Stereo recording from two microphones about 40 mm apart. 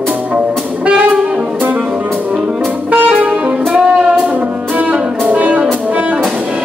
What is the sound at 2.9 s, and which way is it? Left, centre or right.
Music, right.